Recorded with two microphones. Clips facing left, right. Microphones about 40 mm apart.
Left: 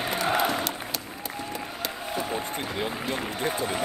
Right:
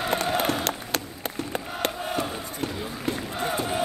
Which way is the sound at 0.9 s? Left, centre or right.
Right.